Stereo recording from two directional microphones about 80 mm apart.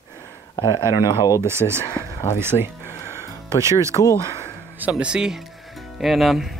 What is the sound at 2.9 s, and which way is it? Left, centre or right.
Music, left.